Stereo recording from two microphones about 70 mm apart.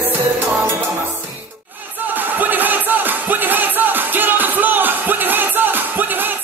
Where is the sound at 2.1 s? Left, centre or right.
Right.